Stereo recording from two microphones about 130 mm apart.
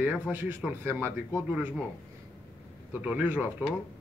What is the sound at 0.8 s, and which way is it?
Speech, 15° right (ahead or behind).